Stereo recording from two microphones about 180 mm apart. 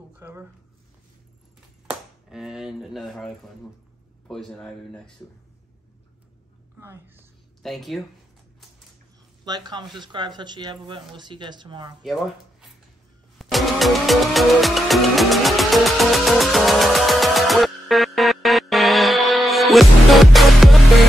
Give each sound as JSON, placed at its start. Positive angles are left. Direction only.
{"t": 0.1, "sound": "speech", "side_deg": -10}
{"t": 1.9, "sound": "speech", "side_deg": 0}
{"t": 6.8, "sound": "a woman's voice", "side_deg": -15}
{"t": 7.6, "sound": "speech", "side_deg": 0}
{"t": 9.4, "sound": "speech", "side_deg": -25}
{"t": 12.0, "sound": "speech", "side_deg": 0}
{"t": 13.4, "sound": "music", "side_deg": 0}